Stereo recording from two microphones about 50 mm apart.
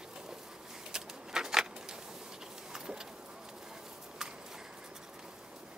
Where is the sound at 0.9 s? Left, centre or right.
Centre.